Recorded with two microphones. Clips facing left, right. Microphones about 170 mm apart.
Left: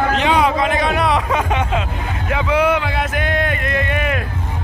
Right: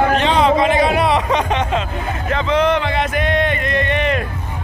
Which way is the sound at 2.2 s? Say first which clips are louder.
Even; 10° left (ahead or behind).